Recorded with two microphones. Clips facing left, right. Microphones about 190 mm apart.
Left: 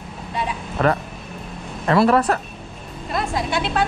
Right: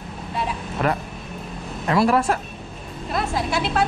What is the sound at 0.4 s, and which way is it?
Vehicle, centre (ahead or behind).